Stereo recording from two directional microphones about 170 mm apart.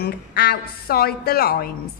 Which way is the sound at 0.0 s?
65° left (ahead or behind).